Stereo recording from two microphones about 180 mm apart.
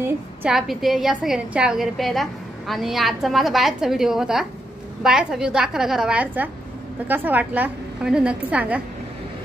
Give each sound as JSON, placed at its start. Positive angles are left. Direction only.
{"t": 0.0, "sound": "a woman's voice", "side_deg": -5}